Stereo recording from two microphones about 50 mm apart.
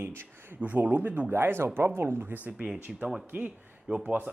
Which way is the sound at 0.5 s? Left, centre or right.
Right.